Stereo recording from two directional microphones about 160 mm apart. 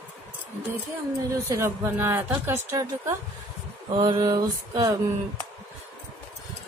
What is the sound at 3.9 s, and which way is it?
Mantra, 30° right (ahead or behind).